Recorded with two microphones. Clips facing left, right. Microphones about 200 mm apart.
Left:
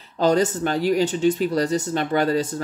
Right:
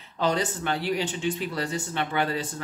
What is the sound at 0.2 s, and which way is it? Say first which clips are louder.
Speech: left 7 dB; 40° left (ahead or behind).